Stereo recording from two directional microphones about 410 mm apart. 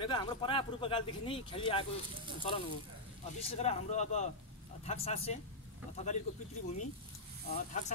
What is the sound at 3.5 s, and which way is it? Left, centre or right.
Speech, centre.